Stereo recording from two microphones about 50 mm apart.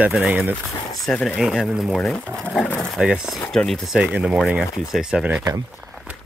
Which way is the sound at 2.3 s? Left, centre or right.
Right.